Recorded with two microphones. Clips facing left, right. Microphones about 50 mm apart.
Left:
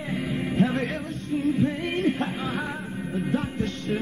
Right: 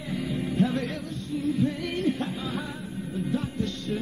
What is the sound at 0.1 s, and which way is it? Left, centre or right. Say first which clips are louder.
Music: left 1 dB; left.